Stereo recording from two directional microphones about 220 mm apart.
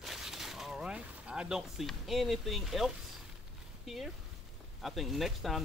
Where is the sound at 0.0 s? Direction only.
Centre (ahead or behind).